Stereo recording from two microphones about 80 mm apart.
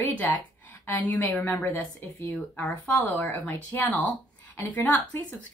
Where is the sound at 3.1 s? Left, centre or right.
Left.